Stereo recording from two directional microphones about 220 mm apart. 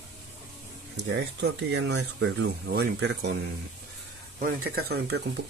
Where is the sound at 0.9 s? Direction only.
50° right (ahead or behind).